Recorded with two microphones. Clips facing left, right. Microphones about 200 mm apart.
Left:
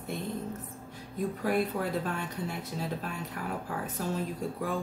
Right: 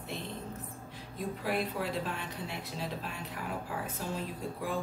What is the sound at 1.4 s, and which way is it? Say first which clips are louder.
Speech: left 4 dB; 50° left (ahead or behind).